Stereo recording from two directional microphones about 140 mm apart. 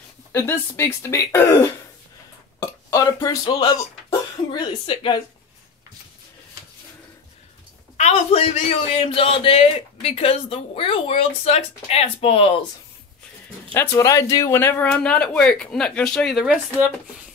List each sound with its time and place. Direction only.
0.3 s speech: 20° left (ahead or behind)
2.6 s a sound: 25° left (ahead or behind)
3.4 s speech: 30° left (ahead or behind)
8.0 s a man's voice: 50° left (ahead or behind)
13.7 s speech: 20° left (ahead or behind)
14.8 s speech: 10° left (ahead or behind)